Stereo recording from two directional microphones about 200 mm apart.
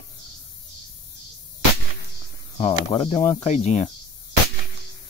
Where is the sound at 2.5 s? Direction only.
30° left (ahead or behind).